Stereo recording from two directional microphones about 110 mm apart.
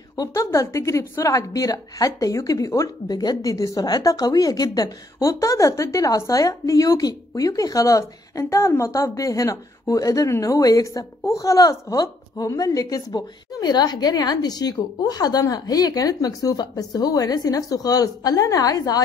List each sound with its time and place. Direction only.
0.1 s a woman's voice: 35° left (ahead or behind)